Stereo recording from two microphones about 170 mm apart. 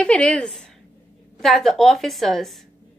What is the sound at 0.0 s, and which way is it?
A woman's voice, 5° left (ahead or behind).